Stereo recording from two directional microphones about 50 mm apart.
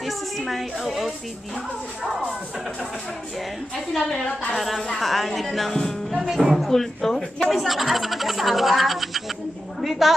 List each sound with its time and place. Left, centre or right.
0.0 s a sound: centre
3.7 s a woman's voice: centre
6.1 s speech: centre
6.7 s a woman's voice: centre